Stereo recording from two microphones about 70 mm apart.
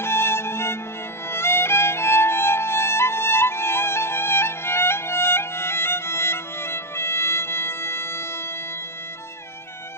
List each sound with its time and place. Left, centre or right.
0.0 s music: left
1.3 s violin: left